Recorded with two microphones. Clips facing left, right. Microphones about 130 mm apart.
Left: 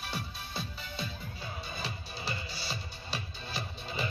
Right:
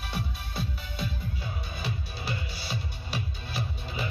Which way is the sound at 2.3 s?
5° right (ahead or behind).